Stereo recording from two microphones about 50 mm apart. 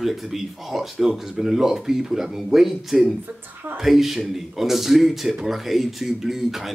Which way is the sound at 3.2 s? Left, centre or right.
Right.